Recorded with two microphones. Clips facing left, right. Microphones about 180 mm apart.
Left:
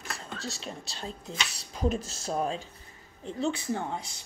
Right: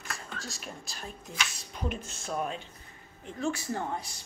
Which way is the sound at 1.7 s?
40° left (ahead or behind).